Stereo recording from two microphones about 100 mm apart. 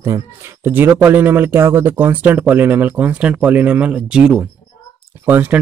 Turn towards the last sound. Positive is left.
turn(degrees=-20)  # may be behind; listen again after turning